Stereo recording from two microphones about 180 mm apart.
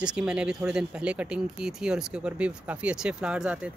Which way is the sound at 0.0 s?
5° right (ahead or behind).